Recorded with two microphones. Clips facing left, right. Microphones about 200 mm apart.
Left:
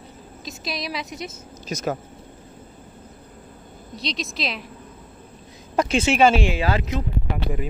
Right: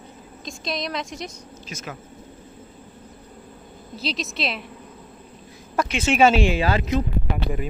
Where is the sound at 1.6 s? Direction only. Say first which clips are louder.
Left 10 dB; 40° left (ahead or behind).